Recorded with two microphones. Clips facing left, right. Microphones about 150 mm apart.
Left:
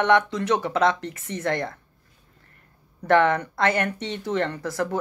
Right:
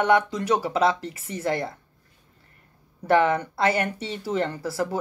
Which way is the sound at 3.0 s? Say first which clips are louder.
Left 1 dB; 5° right (ahead or behind).